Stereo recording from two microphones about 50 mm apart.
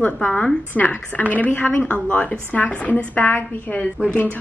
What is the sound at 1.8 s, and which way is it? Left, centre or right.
A woman's voice, left.